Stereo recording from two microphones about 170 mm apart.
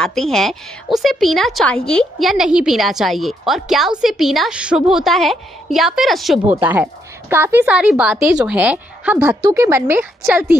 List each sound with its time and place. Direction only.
0.0 s a woman's voice: centre (ahead or behind)
6.6 s a woman's voice: 10° right (ahead or behind)